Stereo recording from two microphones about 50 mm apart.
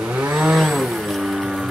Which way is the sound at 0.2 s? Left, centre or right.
Right.